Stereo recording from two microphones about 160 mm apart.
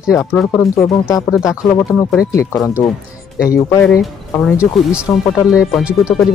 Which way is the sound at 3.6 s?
20° left (ahead or behind).